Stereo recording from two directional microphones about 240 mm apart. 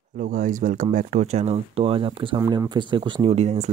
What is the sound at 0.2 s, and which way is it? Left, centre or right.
Speech, right.